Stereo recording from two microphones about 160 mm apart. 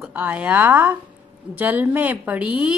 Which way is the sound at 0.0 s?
5° right (ahead or behind).